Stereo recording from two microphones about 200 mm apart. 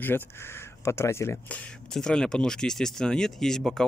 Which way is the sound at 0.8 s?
15° left (ahead or behind).